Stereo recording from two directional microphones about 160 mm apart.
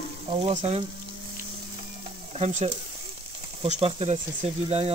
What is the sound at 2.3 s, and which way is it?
Speech, 40° right (ahead or behind).